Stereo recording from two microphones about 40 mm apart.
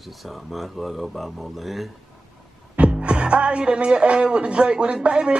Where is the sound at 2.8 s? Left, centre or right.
Right.